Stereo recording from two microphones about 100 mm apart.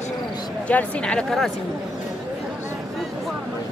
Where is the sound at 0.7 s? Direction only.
10° left (ahead or behind).